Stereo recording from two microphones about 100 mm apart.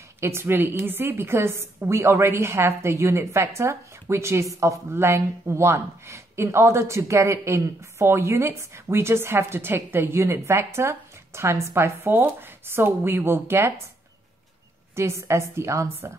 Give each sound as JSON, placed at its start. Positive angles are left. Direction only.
{"t": 0.2, "sound": "a woman's voice", "side_deg": -25}
{"t": 15.0, "sound": "a woman's voice", "side_deg": -30}